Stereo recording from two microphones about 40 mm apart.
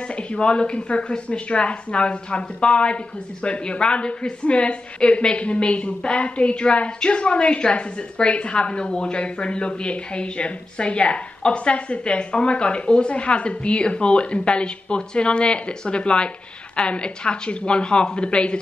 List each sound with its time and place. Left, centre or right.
0.3 s a woman's voice: left